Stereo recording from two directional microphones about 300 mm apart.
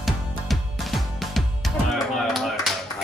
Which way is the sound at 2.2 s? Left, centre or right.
Centre.